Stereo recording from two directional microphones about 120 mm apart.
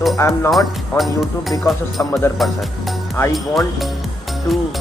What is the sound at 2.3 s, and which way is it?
Speech, centre (ahead or behind).